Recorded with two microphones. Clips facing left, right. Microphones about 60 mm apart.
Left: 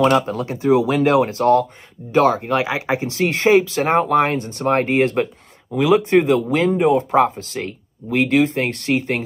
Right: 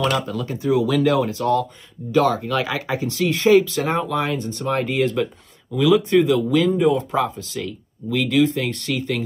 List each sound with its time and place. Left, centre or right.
0.3 s speech: left